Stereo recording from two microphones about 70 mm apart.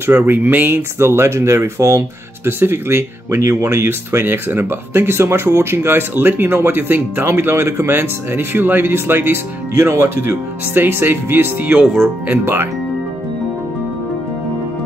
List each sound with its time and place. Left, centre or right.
0.0 s speech: right
0.9 s speech: right
11.8 s speech: centre
12.3 s speech: right